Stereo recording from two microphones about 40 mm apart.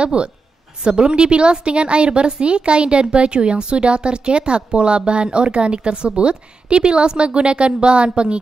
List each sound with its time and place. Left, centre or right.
0.0 s a woman's voice: right